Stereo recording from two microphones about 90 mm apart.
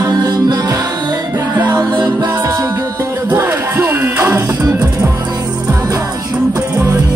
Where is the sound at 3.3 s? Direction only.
25° right (ahead or behind).